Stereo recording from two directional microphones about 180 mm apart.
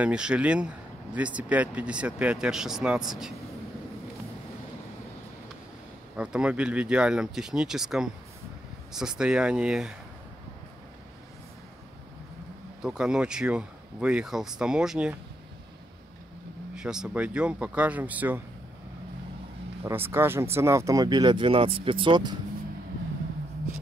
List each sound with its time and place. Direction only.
0.0 s speech: 5° right (ahead or behind)
6.1 s speech: 5° right (ahead or behind)
12.8 s speech: 5° right (ahead or behind)
16.7 s speech: 5° right (ahead or behind)
19.8 s speech: 10° right (ahead or behind)